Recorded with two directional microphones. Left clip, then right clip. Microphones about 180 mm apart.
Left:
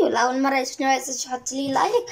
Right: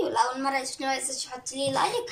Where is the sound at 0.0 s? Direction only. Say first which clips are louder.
Left 5 dB; 50° left (ahead or behind).